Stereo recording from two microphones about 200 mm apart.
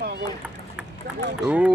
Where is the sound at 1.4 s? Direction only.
5° right (ahead or behind).